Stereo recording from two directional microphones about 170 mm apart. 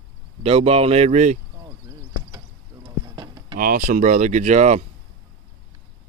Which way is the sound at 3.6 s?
55° right (ahead or behind).